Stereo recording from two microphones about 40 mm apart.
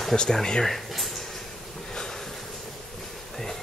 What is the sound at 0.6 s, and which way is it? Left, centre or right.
Speech, centre.